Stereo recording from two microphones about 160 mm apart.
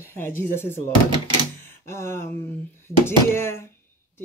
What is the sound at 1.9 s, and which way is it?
Speech, 15° left (ahead or behind).